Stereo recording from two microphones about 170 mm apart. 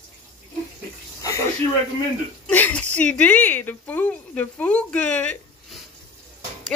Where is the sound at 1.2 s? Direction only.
20° left (ahead or behind).